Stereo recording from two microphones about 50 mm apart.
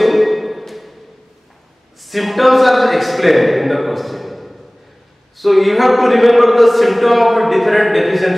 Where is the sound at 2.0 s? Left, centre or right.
Centre.